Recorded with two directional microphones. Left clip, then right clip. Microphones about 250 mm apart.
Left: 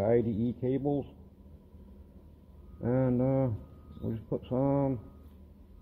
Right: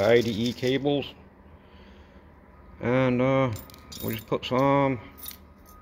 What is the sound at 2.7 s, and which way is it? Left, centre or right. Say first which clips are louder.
Speech: right 6 dB; centre.